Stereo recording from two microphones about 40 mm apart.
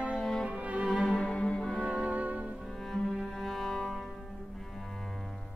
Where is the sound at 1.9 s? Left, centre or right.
Right.